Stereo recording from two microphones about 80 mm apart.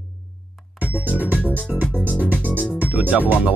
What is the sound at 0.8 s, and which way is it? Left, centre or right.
Music, centre.